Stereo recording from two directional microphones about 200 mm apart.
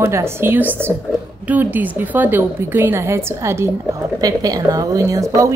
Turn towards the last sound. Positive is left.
turn(degrees=-15)  # may be behind; listen again after turning